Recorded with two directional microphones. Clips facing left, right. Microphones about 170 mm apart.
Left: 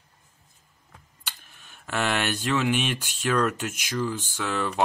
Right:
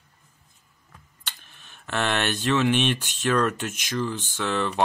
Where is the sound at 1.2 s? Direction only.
10° left (ahead or behind).